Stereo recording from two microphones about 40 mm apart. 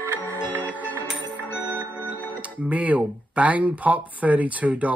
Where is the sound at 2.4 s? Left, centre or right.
Right.